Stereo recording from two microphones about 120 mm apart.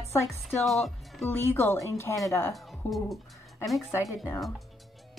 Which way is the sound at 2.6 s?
Centre (ahead or behind).